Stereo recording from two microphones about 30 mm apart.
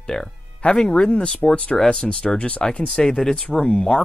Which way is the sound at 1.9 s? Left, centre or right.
Left.